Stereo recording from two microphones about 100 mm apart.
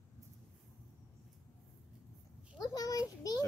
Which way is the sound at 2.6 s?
35° left (ahead or behind).